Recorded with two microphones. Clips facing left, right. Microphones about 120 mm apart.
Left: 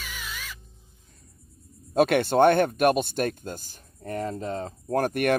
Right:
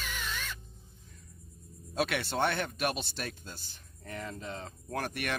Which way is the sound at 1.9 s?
50° left (ahead or behind).